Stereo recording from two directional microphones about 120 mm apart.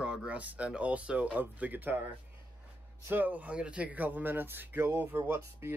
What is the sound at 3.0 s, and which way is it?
Speech, 15° right (ahead or behind).